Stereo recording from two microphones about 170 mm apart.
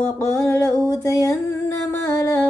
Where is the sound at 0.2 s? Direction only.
15° left (ahead or behind).